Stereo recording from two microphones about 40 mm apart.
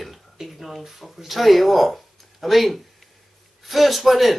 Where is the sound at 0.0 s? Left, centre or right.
Centre.